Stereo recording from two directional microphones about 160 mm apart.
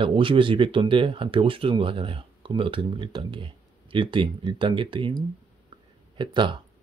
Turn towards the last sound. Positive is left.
turn(degrees=-30)  # may be behind; listen again after turning